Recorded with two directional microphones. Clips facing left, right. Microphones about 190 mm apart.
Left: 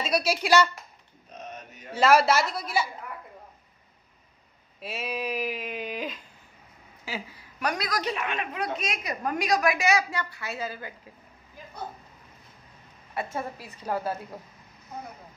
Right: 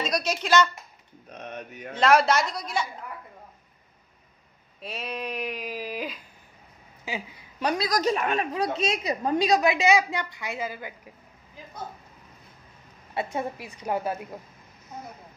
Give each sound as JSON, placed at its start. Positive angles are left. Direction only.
{"t": 0.0, "sound": "speech", "side_deg": 5}
{"t": 1.3, "sound": "mantra", "side_deg": -60}
{"t": 2.0, "sound": "speech", "side_deg": 5}
{"t": 4.7, "sound": "speech", "side_deg": 5}
{"t": 7.6, "sound": "a woman's voice", "side_deg": -25}
{"t": 7.9, "sound": "a woman's voice", "side_deg": -40}
{"t": 13.1, "sound": "a woman's voice", "side_deg": -20}